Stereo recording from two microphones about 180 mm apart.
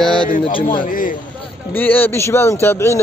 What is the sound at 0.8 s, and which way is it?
Speech, 50° left (ahead or behind).